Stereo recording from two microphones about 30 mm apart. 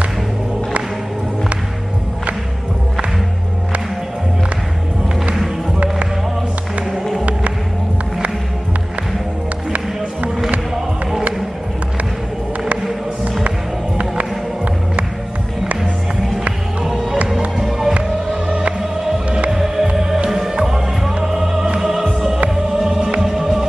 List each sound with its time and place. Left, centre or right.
13.9 s music: right
17.6 s music: centre
18.5 s music: right
18.8 s music: centre
23.2 s music: centre